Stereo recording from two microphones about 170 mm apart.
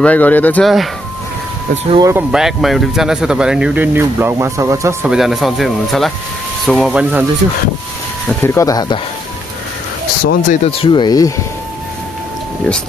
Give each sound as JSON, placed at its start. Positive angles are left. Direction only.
{"t": 0.0, "sound": "speech", "side_deg": 10}
{"t": 2.0, "sound": "speech", "side_deg": -15}
{"t": 2.3, "sound": "speech", "side_deg": 0}
{"t": 5.0, "sound": "speech", "side_deg": 0}
{"t": 8.3, "sound": "speech", "side_deg": 10}
{"t": 10.2, "sound": "speech", "side_deg": 45}
{"t": 10.7, "sound": "speech", "side_deg": 30}
{"t": 12.7, "sound": "speech", "side_deg": 5}